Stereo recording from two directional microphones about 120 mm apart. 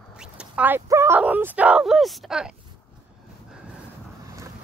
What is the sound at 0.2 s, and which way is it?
Speech, 10° right (ahead or behind).